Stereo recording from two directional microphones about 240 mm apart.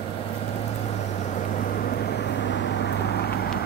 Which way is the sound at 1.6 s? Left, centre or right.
Left.